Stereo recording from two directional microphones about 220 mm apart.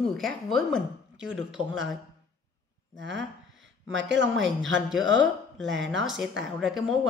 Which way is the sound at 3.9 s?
55° right (ahead or behind).